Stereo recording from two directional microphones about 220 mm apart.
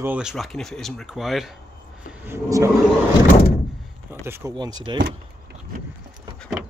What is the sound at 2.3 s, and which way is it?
Speech, 15° right (ahead or behind).